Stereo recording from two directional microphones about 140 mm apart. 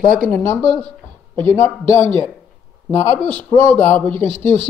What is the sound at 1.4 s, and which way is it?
Speech, 15° left (ahead or behind).